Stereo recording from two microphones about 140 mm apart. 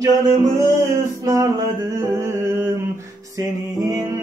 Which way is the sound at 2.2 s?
20° right (ahead or behind).